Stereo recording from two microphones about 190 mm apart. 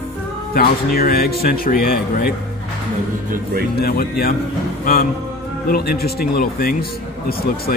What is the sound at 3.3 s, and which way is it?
Speech, 50° right (ahead or behind).